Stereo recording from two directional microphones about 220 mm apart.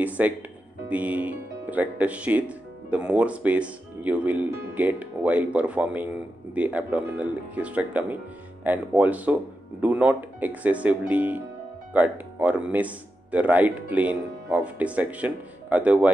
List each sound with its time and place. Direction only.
0.0 s speech: 5° right (ahead or behind)